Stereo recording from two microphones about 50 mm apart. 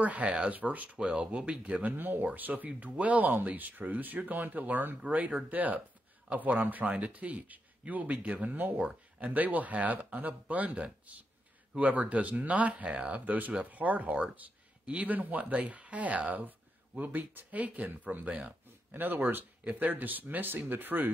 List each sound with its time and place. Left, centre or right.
0.0 s speech: right
0.9 s speech: centre
13.2 s speech: right
18.9 s speech: right